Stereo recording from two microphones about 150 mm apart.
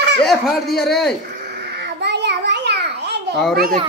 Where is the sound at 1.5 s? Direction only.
90° right.